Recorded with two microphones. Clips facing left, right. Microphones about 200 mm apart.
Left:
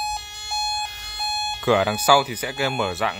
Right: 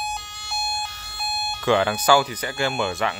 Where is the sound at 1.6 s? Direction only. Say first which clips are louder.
Left 1 dB; 5° left (ahead or behind).